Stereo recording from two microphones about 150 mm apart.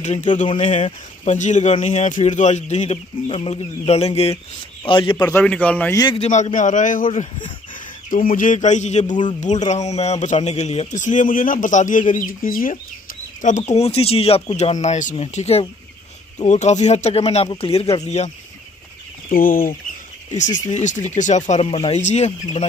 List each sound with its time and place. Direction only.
0.0 s speech: 50° left (ahead or behind); by 5.1 s 35° left (ahead or behind)
5.3 s a man's voice: 10° left (ahead or behind)
6.1 s a man's voice: 50° left (ahead or behind)
7.1 s speech: 35° left (ahead or behind)
8.1 s a man's voice: 65° left (ahead or behind)
13.4 s speech: 55° left (ahead or behind)
19.2 s speech: 70° left (ahead or behind)
20.2 s speech: 55° left (ahead or behind)